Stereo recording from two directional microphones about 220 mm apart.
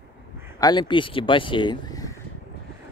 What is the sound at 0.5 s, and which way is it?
Speech, 20° left (ahead or behind).